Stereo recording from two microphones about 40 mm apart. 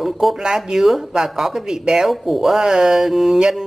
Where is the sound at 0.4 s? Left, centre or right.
Centre.